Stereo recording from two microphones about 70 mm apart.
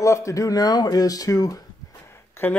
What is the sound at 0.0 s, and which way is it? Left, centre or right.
Speech, left.